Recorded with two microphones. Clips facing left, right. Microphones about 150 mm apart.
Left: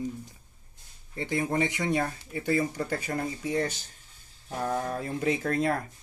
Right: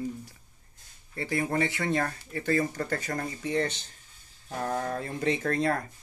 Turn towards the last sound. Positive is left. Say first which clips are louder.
# even
turn(degrees=5)  # may be behind; listen again after turning